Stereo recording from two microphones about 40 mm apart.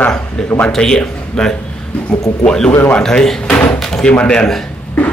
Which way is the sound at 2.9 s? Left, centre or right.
Centre.